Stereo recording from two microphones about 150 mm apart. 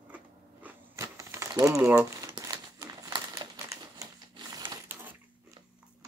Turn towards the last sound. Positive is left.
turn(degrees=-15)  # may be behind; listen again after turning